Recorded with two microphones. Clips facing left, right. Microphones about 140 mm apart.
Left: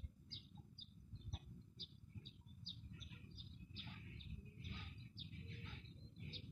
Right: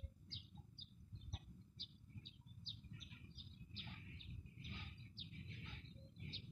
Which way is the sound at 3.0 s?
Centre (ahead or behind).